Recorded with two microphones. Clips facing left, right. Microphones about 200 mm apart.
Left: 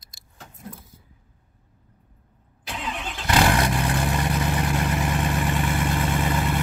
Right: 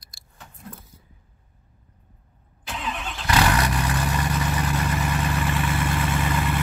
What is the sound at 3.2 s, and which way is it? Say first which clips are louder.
Vehicle: left 1 dB; 25° left (ahead or behind).